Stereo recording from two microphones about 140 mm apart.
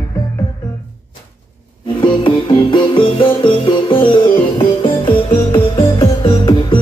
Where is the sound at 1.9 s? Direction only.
35° left (ahead or behind).